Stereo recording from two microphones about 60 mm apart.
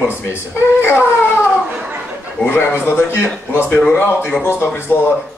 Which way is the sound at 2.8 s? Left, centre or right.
Left.